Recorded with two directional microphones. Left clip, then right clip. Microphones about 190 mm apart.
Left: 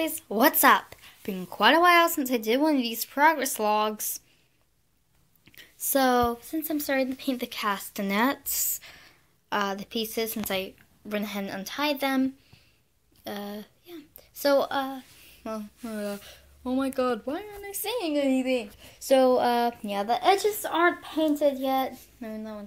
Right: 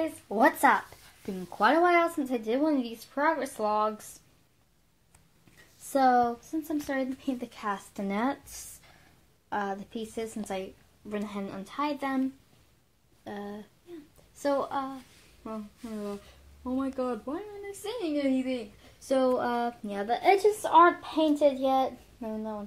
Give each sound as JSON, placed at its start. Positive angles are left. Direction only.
{"t": 0.0, "sound": "speech", "side_deg": 25}
{"t": 5.9, "sound": "speech", "side_deg": 25}
{"t": 9.5, "sound": "speech", "side_deg": 15}
{"t": 15.4, "sound": "speech", "side_deg": 35}
{"t": 16.8, "sound": "speech", "side_deg": 10}
{"t": 20.2, "sound": "speech", "side_deg": 40}
{"t": 21.0, "sound": "speech", "side_deg": 10}